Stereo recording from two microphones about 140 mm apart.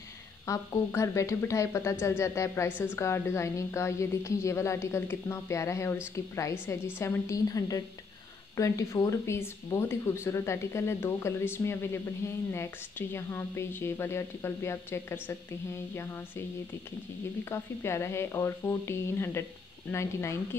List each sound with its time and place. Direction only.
0.5 s a woman's voice: 20° left (ahead or behind)
17.5 s speech: 20° left (ahead or behind)